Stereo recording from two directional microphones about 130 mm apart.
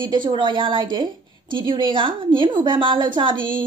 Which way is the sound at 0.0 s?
35° right (ahead or behind).